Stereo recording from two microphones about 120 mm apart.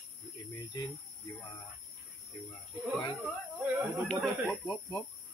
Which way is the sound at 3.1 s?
15° right (ahead or behind).